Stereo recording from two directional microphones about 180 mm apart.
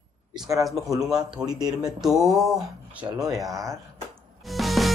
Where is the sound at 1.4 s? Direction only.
20° right (ahead or behind).